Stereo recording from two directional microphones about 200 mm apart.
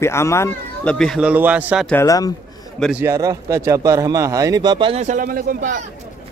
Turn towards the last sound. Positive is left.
turn(degrees=-45)  # may be behind; listen again after turning